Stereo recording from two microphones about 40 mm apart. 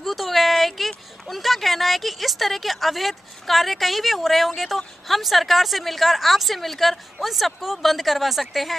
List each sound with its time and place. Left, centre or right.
0.0 s speech: centre